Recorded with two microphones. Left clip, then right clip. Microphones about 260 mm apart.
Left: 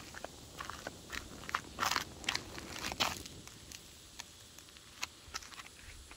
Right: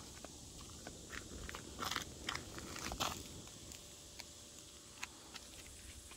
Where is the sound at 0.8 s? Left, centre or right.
Left.